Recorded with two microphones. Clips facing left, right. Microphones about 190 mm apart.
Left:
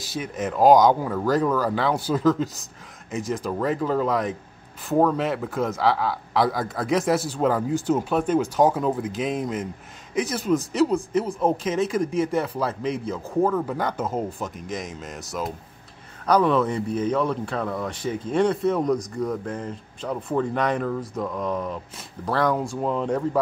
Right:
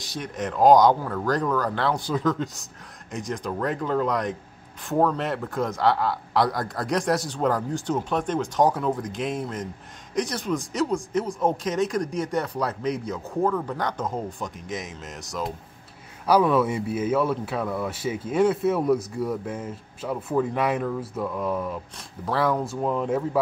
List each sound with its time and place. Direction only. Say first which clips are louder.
0.0 s speech: left 2 dB; 5° left (ahead or behind)